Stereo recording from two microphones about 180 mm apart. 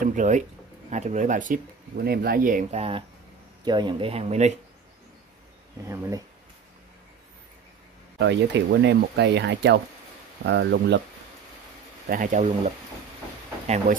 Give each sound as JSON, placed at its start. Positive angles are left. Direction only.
{"t": 0.0, "sound": "speech", "side_deg": -45}
{"t": 3.6, "sound": "speech", "side_deg": -25}
{"t": 5.9, "sound": "speech", "side_deg": -15}
{"t": 8.2, "sound": "speech", "side_deg": -75}
{"t": 12.1, "sound": "speech", "side_deg": -45}